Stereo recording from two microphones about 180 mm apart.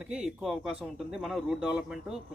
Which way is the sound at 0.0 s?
5° right (ahead or behind).